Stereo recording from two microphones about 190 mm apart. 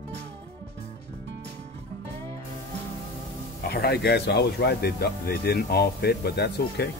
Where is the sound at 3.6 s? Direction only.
55° left (ahead or behind).